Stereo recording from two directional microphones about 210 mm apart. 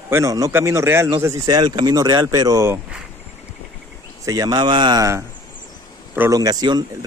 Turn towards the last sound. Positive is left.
turn(degrees=-20)  # may be behind; listen again after turning